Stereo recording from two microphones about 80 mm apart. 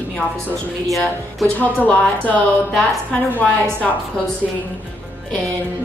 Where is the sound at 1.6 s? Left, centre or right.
Left.